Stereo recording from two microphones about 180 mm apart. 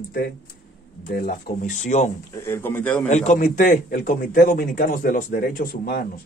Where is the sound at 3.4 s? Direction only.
50° left (ahead or behind).